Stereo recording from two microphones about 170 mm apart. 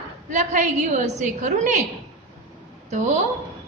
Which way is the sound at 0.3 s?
45° right (ahead or behind).